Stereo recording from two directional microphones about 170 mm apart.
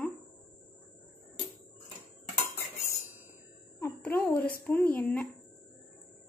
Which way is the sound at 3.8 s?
10° left (ahead or behind).